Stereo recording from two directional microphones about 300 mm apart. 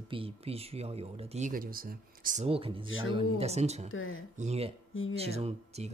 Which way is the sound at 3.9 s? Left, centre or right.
Left.